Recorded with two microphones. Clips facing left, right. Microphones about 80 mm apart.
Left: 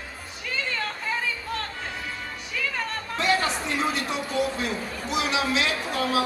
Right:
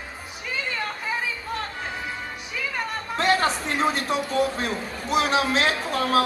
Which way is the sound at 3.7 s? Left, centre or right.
Right.